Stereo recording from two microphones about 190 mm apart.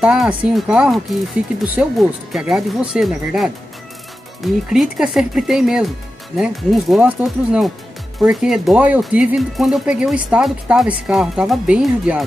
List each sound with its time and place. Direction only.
0.0 s speech: 5° right (ahead or behind)